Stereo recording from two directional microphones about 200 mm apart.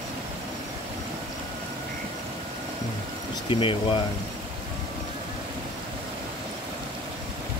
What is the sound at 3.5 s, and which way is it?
Speech, 25° left (ahead or behind).